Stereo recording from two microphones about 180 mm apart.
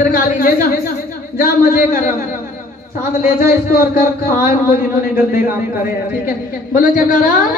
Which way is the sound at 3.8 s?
55° left (ahead or behind).